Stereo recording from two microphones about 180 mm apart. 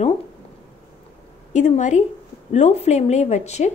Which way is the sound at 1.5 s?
40° left (ahead or behind).